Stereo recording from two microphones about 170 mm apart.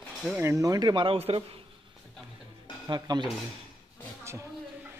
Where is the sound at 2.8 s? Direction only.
25° right (ahead or behind).